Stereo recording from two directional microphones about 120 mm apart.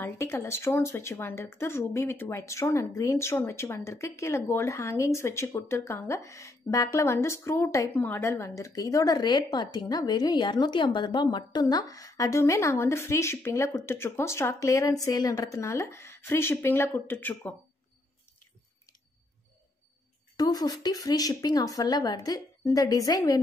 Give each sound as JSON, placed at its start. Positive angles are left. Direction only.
{"t": 0.0, "sound": "speech", "side_deg": 25}
{"t": 20.3, "sound": "a woman's voice", "side_deg": 35}